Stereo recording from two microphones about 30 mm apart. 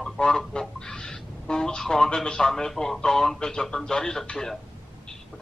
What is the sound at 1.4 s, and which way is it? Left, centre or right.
A man's voice, left.